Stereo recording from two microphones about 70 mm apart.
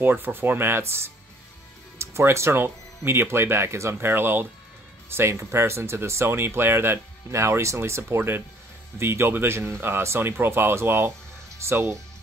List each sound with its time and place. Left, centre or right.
0.0 s speech: right